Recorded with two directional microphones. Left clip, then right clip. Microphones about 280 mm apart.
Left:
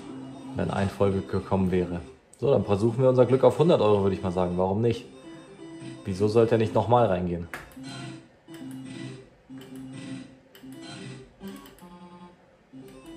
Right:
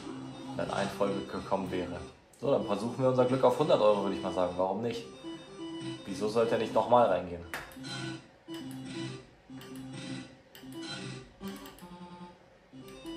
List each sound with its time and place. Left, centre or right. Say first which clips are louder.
0.6 s a man's voice: left 5 dB; left
6.0 s a man's voice: left 7 dB; left